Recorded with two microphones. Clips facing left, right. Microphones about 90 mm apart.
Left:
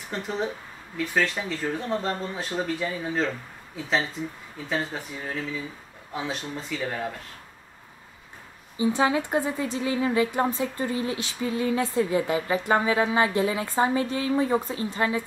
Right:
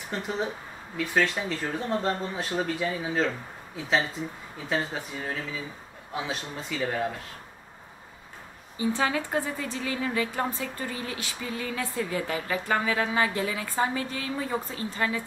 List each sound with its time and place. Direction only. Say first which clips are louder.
0.1 s speech: left 1 dB; centre (ahead or behind)
8.7 s a woman's voice: left 4 dB; 20° left (ahead or behind)